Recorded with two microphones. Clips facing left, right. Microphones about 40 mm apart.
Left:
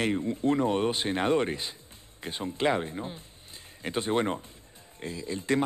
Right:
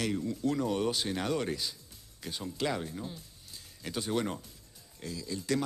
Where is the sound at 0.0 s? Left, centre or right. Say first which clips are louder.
Left 5 dB; left.